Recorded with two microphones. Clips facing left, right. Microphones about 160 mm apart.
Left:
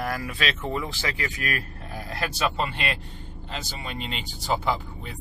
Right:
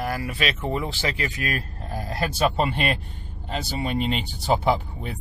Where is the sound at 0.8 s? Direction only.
25° right (ahead or behind).